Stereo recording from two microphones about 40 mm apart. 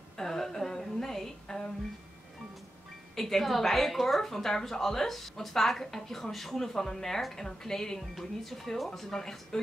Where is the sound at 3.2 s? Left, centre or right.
Centre.